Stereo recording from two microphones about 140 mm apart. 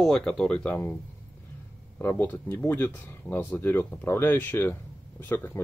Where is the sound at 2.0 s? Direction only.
15° left (ahead or behind).